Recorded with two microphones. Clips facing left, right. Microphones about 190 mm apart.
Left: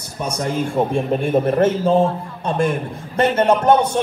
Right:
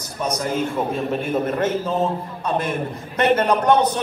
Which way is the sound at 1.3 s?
30° left (ahead or behind).